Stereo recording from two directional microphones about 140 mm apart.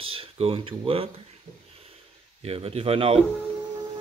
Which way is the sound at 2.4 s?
45° right (ahead or behind).